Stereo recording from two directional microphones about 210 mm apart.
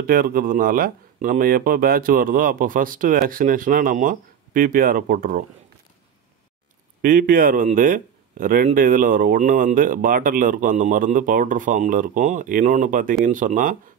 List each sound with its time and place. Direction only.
0.0 s speech: 45° right (ahead or behind)
7.0 s speech: 40° right (ahead or behind)